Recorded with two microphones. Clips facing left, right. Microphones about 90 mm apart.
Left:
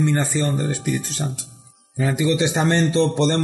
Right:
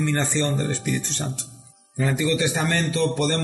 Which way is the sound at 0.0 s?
10° left (ahead or behind).